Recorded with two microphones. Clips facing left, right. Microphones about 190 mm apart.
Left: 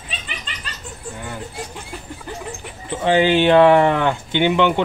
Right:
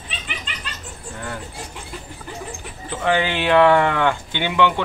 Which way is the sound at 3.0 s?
25° left (ahead or behind).